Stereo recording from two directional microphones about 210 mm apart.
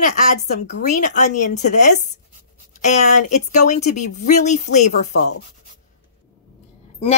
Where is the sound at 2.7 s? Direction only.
35° left (ahead or behind).